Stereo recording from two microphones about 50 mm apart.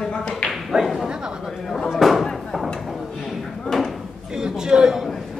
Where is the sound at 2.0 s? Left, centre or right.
Centre.